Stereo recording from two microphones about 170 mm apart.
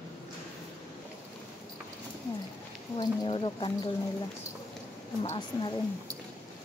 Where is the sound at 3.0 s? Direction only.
30° left (ahead or behind).